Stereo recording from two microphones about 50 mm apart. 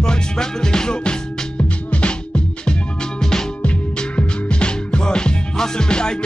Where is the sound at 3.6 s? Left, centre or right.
Left.